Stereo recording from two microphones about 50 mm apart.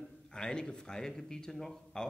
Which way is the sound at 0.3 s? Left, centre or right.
Centre.